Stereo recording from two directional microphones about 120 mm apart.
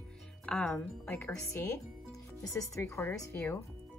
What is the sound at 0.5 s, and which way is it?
Speech, 5° left (ahead or behind).